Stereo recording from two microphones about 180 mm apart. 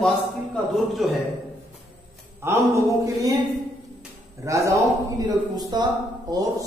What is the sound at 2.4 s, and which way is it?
Speech, 15° right (ahead or behind).